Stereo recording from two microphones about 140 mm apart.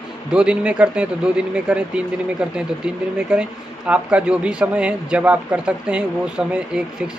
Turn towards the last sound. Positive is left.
turn(degrees=-5)  # may be behind; listen again after turning